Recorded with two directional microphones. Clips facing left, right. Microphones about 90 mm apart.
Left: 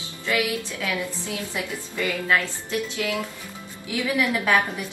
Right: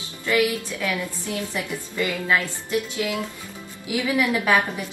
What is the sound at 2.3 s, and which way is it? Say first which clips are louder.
A woman's voice: right 1 dB; 15° right (ahead or behind).